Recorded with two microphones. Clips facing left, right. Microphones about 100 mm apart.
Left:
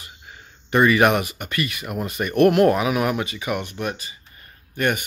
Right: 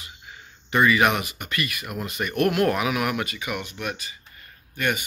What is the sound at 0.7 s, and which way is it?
Speech, 45° left (ahead or behind).